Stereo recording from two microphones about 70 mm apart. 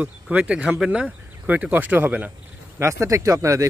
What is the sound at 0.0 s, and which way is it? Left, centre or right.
Speech, centre.